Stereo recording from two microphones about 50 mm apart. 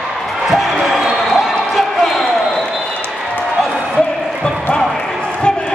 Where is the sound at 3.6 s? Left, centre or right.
Centre.